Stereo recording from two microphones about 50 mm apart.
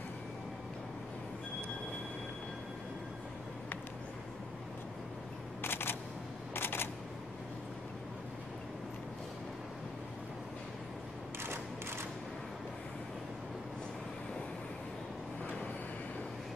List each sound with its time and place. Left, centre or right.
5.6 s camera: left